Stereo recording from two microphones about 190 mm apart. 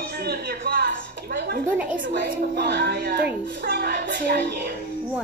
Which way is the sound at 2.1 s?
60° right (ahead or behind).